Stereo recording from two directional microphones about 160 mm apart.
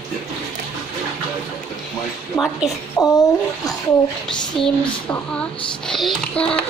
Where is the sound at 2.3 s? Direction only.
20° left (ahead or behind).